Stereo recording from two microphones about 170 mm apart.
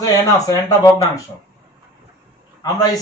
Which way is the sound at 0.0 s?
20° left (ahead or behind).